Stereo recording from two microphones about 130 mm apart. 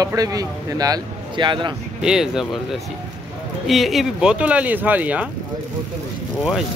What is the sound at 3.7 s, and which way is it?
Speech, centre (ahead or behind).